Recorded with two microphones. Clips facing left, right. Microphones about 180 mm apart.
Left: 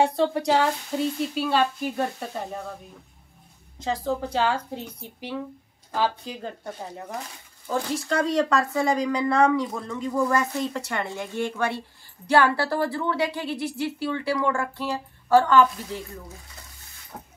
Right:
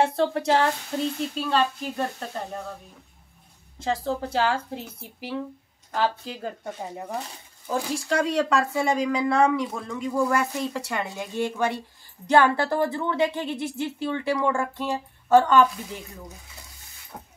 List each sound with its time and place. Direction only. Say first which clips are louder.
0.0 s speech: left 1 dB; centre (ahead or behind)
3.8 s a woman's voice: even; centre (ahead or behind); by 16.0 s 20° right (ahead or behind)
17.1 s beatboxing: left 1 dB; centre (ahead or behind)